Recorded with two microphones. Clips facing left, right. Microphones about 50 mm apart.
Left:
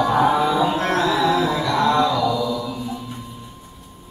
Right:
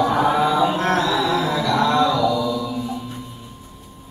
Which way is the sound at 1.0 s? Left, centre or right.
Centre.